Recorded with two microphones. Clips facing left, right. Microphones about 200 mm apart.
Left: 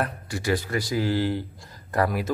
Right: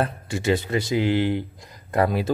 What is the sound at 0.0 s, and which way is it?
Speech, 25° right (ahead or behind).